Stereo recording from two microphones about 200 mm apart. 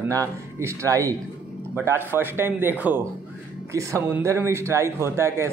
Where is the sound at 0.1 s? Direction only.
15° right (ahead or behind).